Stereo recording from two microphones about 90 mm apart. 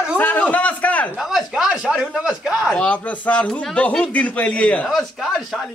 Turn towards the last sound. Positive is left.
turn(degrees=0)  # may be behind; listen again after turning